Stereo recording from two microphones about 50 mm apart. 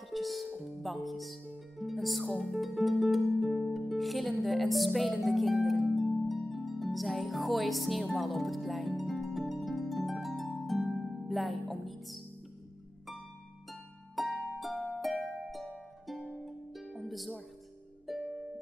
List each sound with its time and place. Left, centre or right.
0.1 s music: centre
0.6 s speech: centre
3.3 s music: centre
5.9 s harp: centre
11.0 s speech: centre
14.2 s harp: centre
14.7 s harp: centre
15.3 s music: centre
16.4 s harp: centre
16.9 s music: centre